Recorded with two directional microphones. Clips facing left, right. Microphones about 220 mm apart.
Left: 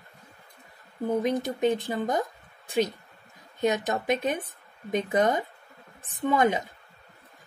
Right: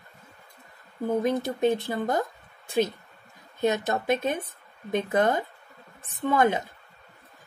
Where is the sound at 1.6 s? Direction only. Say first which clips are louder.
Right 1 dB; 15° left (ahead or behind).